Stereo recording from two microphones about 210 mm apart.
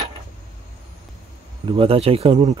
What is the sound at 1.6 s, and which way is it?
Speech, 25° right (ahead or behind).